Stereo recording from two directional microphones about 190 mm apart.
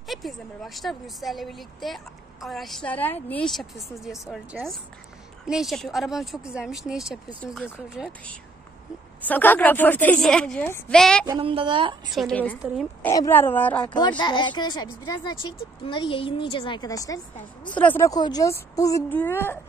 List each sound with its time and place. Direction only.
0.1 s a woman's voice: centre (ahead or behind)
9.2 s a woman's voice: 10° left (ahead or behind)
11.2 s speech: 25° right (ahead or behind)
12.1 s a woman's voice: centre (ahead or behind)
13.8 s a woman's voice: 25° left (ahead or behind)